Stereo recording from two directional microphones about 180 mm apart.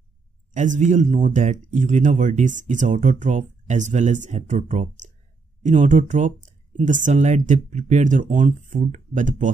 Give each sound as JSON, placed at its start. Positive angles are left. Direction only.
{"t": 0.5, "sound": "speech", "side_deg": -45}